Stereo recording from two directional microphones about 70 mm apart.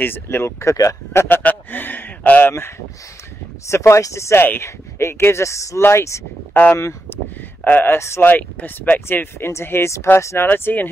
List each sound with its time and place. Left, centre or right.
0.0 s speech: left
1.4 s speech: left
3.6 s speech: left
6.5 s speech: left
7.1 s a sound: left
7.6 s speech: left